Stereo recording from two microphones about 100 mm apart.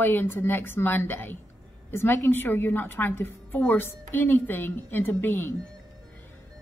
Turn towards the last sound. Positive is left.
turn(degrees=20)  # may be behind; listen again after turning